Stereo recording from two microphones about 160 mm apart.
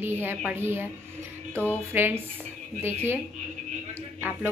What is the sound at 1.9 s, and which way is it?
Speech, 10° right (ahead or behind).